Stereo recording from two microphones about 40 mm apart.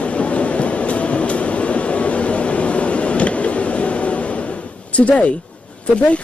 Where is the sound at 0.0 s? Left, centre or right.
Left.